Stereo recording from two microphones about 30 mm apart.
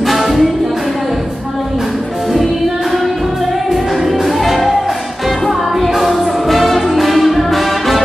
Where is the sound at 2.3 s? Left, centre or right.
Centre.